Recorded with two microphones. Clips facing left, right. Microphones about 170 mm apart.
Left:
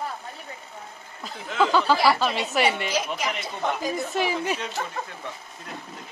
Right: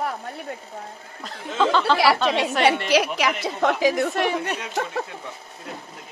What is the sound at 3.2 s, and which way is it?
Speech, 80° right.